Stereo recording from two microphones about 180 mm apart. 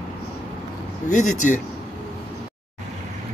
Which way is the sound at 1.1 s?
45° left (ahead or behind).